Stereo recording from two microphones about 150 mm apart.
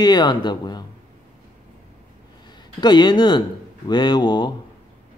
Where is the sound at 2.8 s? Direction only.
30° left (ahead or behind).